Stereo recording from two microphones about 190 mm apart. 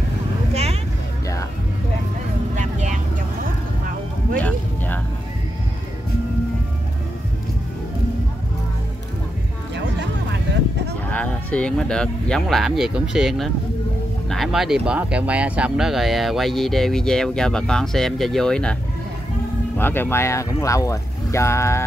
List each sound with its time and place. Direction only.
2.5 s vehicle: 40° right (ahead or behind)
4.4 s a sound: 10° left (ahead or behind)
11.1 s speech: 5° left (ahead or behind)
19.8 s speech: 10° left (ahead or behind)